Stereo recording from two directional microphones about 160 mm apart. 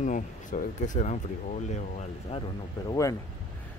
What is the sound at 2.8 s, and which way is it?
Speech, 25° left (ahead or behind).